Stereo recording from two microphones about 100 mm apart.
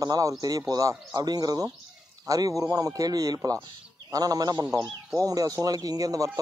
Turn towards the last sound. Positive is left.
turn(degrees=-35)  # may be behind; listen again after turning